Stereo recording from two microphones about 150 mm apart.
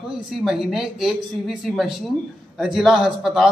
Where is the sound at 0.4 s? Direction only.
Centre (ahead or behind).